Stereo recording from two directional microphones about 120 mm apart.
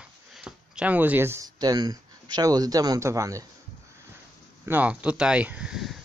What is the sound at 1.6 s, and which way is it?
Speech, 35° right (ahead or behind).